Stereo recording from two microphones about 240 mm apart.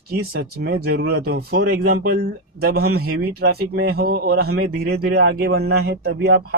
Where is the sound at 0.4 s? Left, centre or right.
Right.